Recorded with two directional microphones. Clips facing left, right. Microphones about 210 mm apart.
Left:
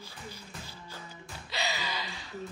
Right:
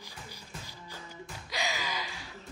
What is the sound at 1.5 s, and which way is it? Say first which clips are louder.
Gasp: even; 10° right (ahead or behind).